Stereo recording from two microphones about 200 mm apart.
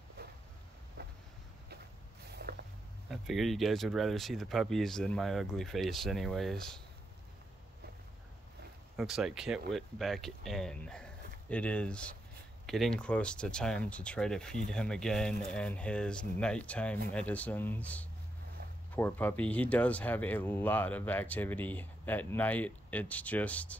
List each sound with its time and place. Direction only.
1.0 s a sound: 55° right (ahead or behind)
2.4 s boat: 50° right (ahead or behind)
3.1 s speech: centre (ahead or behind)
8.9 s speech: centre (ahead or behind)